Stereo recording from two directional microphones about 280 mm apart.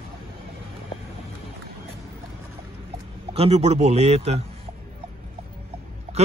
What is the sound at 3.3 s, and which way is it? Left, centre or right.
A man's voice, right.